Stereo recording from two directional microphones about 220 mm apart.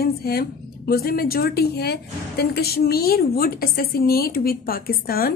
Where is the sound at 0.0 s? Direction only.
45° left (ahead or behind).